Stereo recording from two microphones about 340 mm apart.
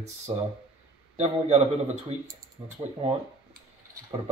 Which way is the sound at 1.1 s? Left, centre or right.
Centre.